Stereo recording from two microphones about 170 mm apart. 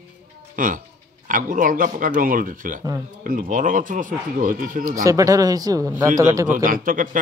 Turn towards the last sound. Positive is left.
turn(degrees=-50)  # may be behind; listen again after turning